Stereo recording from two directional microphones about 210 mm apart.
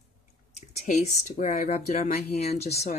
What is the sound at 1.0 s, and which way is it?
Speech, 35° left (ahead or behind).